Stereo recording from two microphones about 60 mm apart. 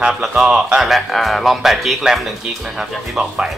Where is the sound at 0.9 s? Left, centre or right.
Centre.